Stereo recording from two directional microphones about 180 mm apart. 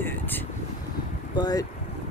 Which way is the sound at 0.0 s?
10° left (ahead or behind).